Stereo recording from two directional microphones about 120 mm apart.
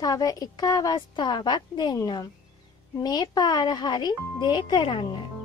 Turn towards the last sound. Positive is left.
turn(degrees=45)  # may be behind; listen again after turning